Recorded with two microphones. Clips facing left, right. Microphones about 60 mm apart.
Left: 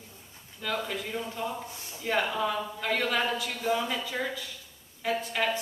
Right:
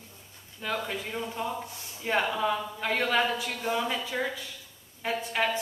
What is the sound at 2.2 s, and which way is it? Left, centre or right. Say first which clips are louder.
Speech: right 1 dB; centre.